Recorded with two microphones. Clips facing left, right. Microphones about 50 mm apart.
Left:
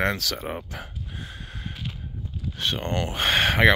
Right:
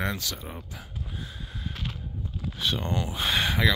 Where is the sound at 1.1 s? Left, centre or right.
Left.